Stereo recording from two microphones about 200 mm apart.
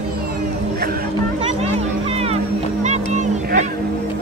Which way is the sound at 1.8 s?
30° right (ahead or behind).